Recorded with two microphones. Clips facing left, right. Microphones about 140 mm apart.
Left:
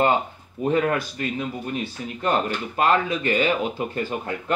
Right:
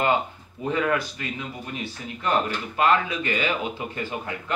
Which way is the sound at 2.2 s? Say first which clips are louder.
Left 1 dB; 35° left (ahead or behind).